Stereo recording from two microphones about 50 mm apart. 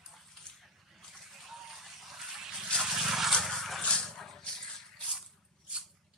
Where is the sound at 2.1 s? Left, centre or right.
Centre.